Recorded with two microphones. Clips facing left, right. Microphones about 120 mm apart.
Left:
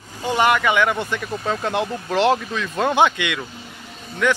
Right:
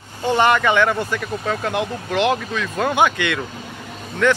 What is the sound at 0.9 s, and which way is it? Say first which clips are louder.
Speech: right 2 dB; 20° left (ahead or behind).